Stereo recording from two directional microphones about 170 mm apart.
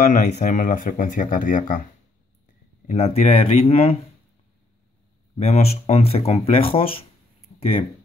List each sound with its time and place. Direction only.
0.0 s speech: 45° left (ahead or behind)
2.9 s speech: 40° left (ahead or behind)
5.4 s speech: 40° left (ahead or behind)